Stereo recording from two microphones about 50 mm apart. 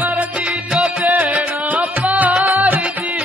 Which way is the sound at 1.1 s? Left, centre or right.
Right.